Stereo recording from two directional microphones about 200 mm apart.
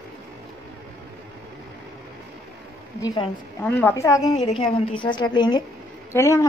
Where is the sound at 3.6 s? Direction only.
10° left (ahead or behind).